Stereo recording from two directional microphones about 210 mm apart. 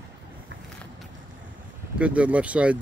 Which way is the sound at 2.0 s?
5° right (ahead or behind).